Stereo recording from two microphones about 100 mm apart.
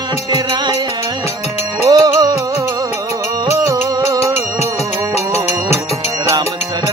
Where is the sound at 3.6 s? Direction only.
35° right (ahead or behind).